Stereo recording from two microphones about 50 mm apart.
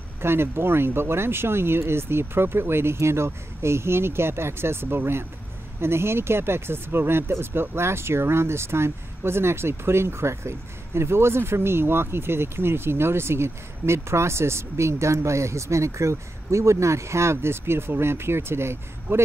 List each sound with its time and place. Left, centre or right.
0.2 s speech: right